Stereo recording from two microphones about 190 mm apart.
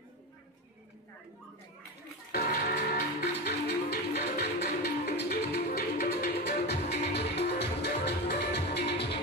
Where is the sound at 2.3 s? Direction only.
50° left (ahead or behind).